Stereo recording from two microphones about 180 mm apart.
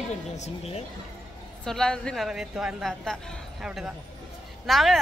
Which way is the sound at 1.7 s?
5° left (ahead or behind).